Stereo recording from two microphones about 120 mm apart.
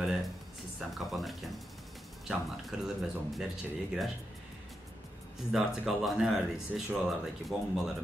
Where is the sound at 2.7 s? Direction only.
5° right (ahead or behind).